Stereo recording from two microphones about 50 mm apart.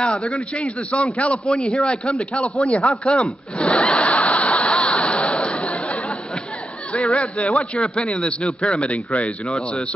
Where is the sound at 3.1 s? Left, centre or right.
Left.